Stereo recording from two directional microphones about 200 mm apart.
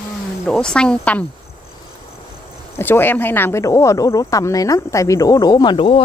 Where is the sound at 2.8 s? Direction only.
10° left (ahead or behind).